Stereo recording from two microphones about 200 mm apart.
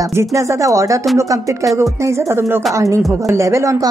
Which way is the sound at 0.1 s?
15° right (ahead or behind).